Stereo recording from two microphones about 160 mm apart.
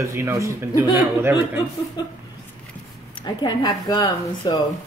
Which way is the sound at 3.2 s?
25° left (ahead or behind).